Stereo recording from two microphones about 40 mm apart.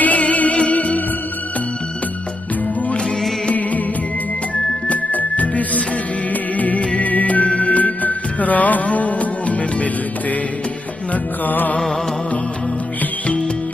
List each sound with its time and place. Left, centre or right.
0.0 s music: left
4.8 s music: left
11.4 s music: left